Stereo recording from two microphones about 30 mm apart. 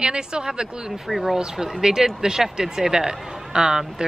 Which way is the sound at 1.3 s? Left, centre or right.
Right.